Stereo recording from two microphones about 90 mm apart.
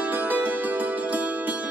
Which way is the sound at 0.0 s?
20° right (ahead or behind).